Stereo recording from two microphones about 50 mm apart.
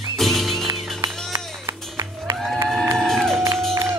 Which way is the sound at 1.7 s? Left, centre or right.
Right.